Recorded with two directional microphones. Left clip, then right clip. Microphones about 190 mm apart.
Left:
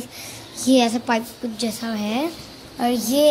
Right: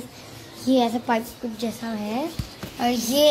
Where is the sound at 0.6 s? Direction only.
10° left (ahead or behind).